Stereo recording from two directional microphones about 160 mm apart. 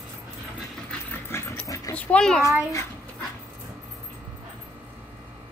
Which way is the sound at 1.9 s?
10° left (ahead or behind).